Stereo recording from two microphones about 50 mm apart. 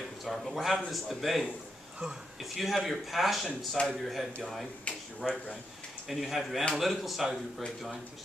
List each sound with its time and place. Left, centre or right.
0.2 s speech: centre
2.5 s speech: centre
4.9 s a sound: left
5.2 s speech: centre